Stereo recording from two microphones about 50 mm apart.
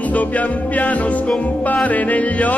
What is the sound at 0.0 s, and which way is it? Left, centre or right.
Music, left.